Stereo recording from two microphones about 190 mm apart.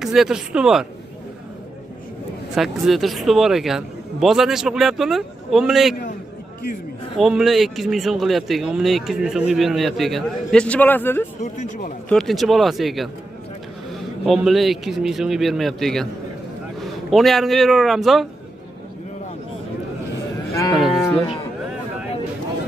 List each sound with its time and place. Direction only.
0.0 s speech: centre (ahead or behind)
2.5 s speech: centre (ahead or behind)
7.2 s speech: centre (ahead or behind)
11.4 s speech: 40° left (ahead or behind)
12.1 s speech: centre (ahead or behind)
14.2 s speech: centre (ahead or behind)
17.1 s speech: centre (ahead or behind)
20.8 s a sound: centre (ahead or behind)